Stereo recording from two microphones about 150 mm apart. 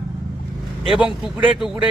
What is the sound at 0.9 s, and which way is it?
Speech, 5° right (ahead or behind).